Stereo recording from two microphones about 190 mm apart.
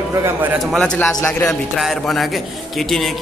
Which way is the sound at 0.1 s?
15° right (ahead or behind).